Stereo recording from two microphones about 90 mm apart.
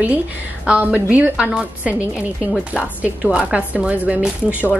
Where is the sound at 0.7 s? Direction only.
15° right (ahead or behind).